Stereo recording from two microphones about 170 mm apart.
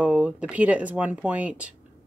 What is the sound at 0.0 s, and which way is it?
Speech, 10° right (ahead or behind).